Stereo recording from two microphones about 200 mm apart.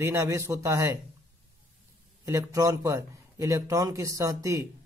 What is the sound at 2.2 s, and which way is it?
Speech, 15° right (ahead or behind).